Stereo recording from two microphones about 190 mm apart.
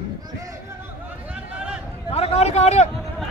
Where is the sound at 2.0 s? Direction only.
30° left (ahead or behind).